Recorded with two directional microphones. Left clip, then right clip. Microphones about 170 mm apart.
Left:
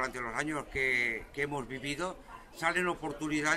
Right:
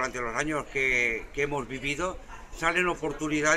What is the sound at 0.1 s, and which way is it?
A man's voice, 30° left (ahead or behind).